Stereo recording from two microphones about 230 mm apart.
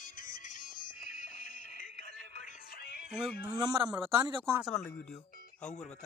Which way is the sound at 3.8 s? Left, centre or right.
Centre.